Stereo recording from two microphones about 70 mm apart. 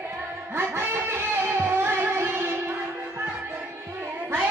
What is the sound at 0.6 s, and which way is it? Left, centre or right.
Music, right.